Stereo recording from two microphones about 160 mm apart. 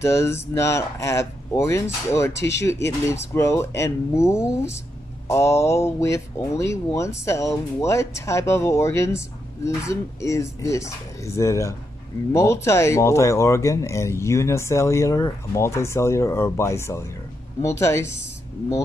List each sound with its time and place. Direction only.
0.0 s speech: 15° left (ahead or behind)